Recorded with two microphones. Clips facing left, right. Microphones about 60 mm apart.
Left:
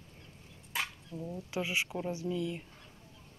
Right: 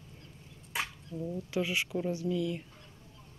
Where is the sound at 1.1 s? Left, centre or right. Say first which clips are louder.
Right 3 dB; left.